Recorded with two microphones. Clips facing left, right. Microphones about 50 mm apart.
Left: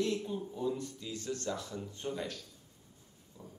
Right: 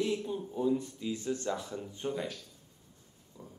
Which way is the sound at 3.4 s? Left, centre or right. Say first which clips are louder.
Right 1 dB; centre.